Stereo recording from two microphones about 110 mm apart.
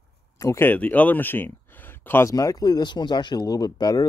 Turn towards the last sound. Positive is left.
turn(degrees=35)  # may be behind; listen again after turning